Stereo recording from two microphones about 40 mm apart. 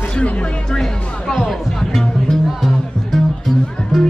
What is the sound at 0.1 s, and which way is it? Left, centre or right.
Speech, left.